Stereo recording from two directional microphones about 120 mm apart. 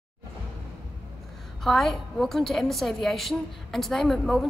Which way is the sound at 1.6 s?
Centre (ahead or behind).